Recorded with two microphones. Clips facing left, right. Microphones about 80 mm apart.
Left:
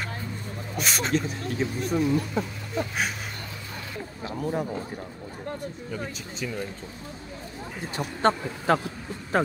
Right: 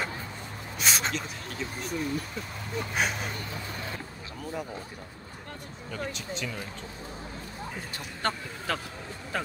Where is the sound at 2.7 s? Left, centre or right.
Centre.